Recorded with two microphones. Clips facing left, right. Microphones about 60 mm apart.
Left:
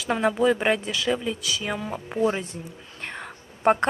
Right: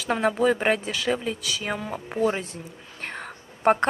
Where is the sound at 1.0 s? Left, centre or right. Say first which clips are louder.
Even; centre.